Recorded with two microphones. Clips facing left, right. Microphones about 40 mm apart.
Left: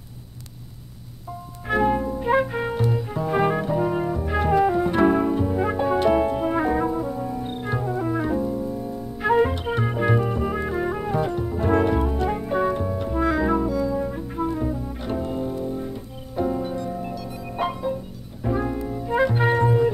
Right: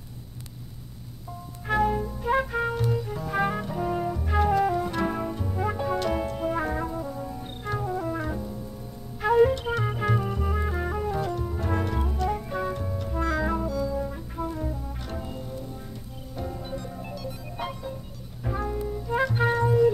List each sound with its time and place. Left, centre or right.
1.7 s music: left
8.4 s music: left
16.6 s music: centre
18.8 s music: left